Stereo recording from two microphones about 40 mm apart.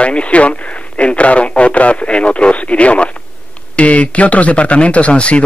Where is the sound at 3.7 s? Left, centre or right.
Left.